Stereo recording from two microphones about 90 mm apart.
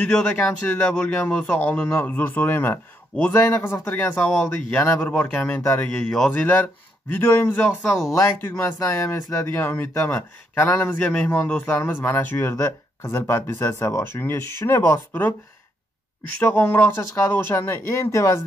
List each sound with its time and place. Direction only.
0.0 s a man's voice: 15° left (ahead or behind)
6.3 s a man's voice: 20° left (ahead or behind)
16.4 s speech: 20° left (ahead or behind)